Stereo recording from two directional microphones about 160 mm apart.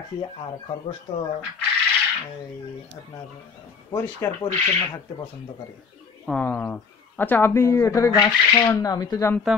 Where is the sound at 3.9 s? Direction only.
15° left (ahead or behind).